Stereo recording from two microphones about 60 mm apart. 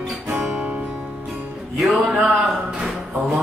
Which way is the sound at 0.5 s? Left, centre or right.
Right.